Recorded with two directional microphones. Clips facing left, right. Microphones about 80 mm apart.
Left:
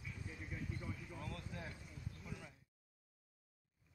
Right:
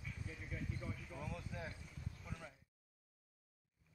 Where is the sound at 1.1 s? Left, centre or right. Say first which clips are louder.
Right 1 dB; centre.